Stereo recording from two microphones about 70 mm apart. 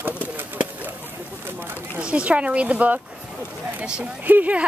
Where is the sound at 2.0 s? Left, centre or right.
Centre.